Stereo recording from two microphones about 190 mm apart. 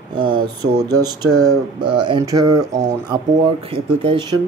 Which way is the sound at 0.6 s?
20° right (ahead or behind).